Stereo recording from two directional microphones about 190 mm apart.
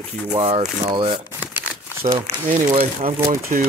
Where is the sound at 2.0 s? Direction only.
25° right (ahead or behind).